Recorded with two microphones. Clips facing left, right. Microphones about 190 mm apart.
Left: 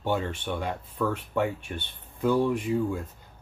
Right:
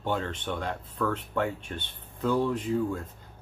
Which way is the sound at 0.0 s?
10° left (ahead or behind).